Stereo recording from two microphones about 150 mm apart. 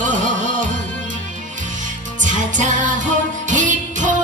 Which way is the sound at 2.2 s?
55° right (ahead or behind).